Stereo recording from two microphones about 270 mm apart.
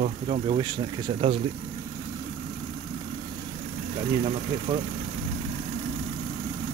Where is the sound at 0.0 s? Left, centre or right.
Right.